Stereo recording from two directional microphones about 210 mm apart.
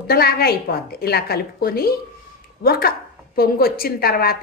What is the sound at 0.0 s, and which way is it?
A woman's voice, 45° left (ahead or behind).